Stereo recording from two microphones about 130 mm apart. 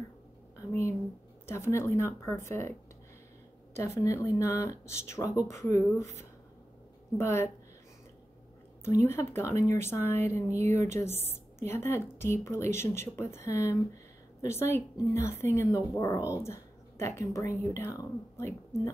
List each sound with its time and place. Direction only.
0.7 s a sound: 20° left (ahead or behind)
1.4 s a woman's voice: 20° left (ahead or behind)
3.7 s a woman's voice: 20° left (ahead or behind)
7.2 s a woman's voice: 20° left (ahead or behind)
8.8 s a woman's voice: 20° left (ahead or behind)
10.6 s speech: 65° right (ahead or behind)
11.0 s a woman's voice: 20° left (ahead or behind)